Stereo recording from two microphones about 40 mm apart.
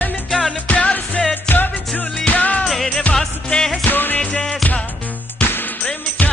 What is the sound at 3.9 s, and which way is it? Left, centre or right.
Music, left.